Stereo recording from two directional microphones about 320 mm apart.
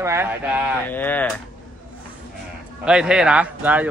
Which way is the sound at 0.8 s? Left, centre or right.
Centre.